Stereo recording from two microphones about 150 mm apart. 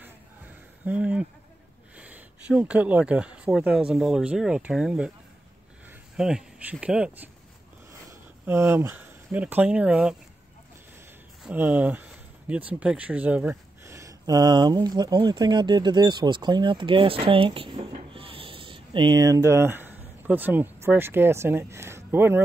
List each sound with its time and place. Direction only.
0.8 s speech: 10° right (ahead or behind)
6.1 s speech: 5° right (ahead or behind)
11.4 s speech: 10° right (ahead or behind)